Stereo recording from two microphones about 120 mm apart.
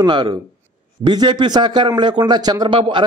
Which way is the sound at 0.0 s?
35° right (ahead or behind).